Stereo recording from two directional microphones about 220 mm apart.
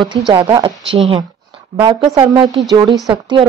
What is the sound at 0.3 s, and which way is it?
A woman's voice, 20° right (ahead or behind).